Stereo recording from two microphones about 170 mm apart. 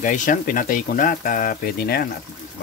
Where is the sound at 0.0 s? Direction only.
50° left (ahead or behind).